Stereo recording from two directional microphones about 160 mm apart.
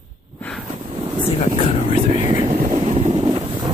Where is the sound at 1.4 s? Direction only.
40° left (ahead or behind).